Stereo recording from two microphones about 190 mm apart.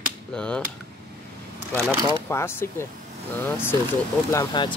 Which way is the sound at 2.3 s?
15° left (ahead or behind).